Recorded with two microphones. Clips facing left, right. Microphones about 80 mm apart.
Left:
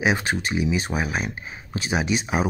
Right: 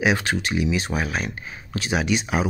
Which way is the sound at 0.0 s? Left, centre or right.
Left.